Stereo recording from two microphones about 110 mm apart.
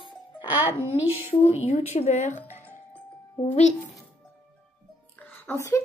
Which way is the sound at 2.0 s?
90° left.